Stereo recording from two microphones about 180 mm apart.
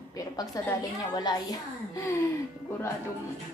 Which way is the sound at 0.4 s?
20° left (ahead or behind).